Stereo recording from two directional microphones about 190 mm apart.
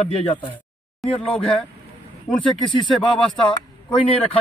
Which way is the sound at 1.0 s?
Centre (ahead or behind).